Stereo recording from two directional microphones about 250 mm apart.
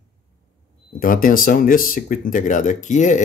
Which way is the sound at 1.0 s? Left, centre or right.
Left.